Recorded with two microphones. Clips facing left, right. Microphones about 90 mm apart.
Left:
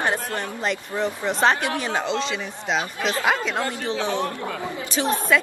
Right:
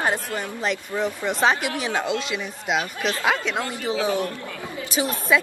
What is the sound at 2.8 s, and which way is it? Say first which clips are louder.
A man's voice: left 1 dB; 30° left (ahead or behind).